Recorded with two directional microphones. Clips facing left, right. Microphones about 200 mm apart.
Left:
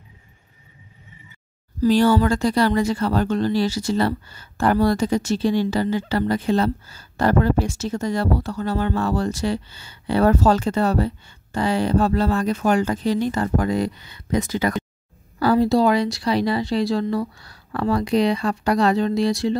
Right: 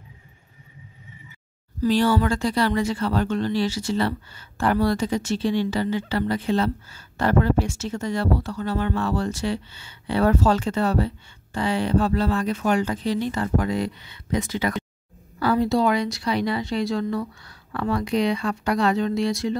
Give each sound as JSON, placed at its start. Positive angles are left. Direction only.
{"t": 1.8, "sound": "speech", "side_deg": 45}